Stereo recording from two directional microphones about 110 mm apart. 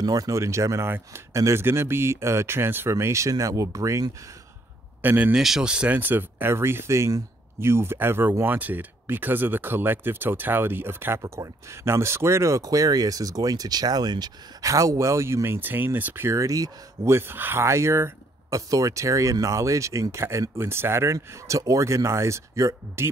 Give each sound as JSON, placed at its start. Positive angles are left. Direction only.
{"t": 0.0, "sound": "speech", "side_deg": -35}
{"t": 5.0, "sound": "speech", "side_deg": -15}